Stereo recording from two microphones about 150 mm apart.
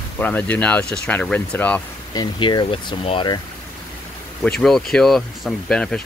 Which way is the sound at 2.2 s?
30° left (ahead or behind).